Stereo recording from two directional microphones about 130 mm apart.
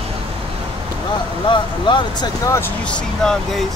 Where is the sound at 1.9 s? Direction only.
35° left (ahead or behind).